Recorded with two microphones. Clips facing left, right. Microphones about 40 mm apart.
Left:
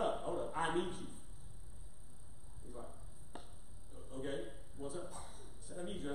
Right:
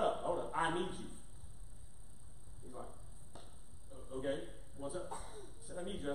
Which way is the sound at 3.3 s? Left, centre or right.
Left.